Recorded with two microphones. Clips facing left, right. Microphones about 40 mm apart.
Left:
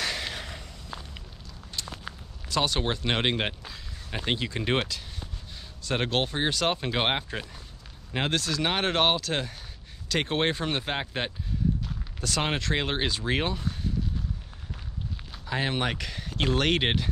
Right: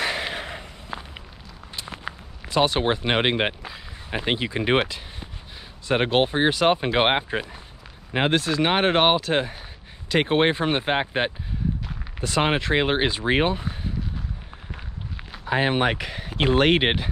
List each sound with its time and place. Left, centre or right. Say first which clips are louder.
0.0 s a sound: right 5 dB; right
1.8 s speech: right 4 dB; right
15.3 s speech: right 7 dB; right